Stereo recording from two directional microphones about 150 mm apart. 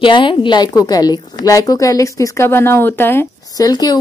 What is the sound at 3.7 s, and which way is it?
Speech, 25° left (ahead or behind).